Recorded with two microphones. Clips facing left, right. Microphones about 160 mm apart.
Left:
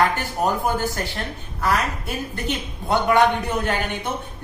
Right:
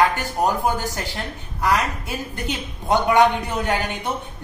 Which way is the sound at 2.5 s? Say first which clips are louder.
Right 2 dB; 15° right (ahead or behind).